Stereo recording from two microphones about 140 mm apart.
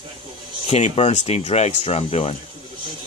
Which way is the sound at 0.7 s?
50° left (ahead or behind).